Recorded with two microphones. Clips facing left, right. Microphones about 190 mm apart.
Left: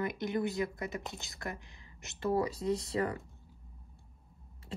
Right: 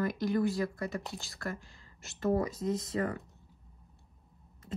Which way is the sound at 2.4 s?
30° left (ahead or behind).